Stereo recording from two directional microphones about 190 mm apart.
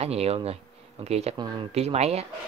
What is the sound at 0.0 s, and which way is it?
Speech, 30° right (ahead or behind).